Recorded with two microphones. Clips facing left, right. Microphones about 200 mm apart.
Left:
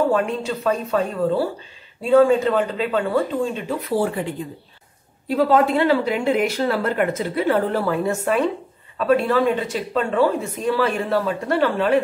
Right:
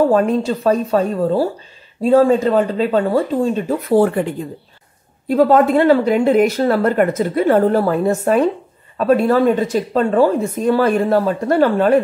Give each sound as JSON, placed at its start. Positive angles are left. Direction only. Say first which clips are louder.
{"t": 0.1, "sound": "speech", "louder": "right 6 dB", "side_deg": -40}
{"t": 5.3, "sound": "speech", "louder": "right 5 dB", "side_deg": -45}